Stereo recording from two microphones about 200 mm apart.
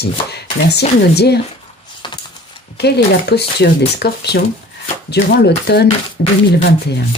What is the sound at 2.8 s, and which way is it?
Speech, 55° left (ahead or behind).